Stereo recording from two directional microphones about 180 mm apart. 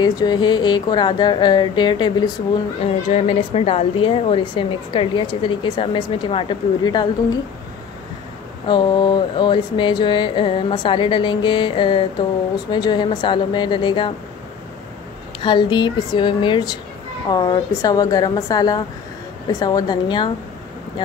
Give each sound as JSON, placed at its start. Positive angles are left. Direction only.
{"t": 0.0, "sound": "a woman's voice", "side_deg": 25}
{"t": 2.8, "sound": "a woman's voice", "side_deg": 35}
{"t": 8.6, "sound": "a woman's voice", "side_deg": 25}
{"t": 15.4, "sound": "a woman's voice", "side_deg": 25}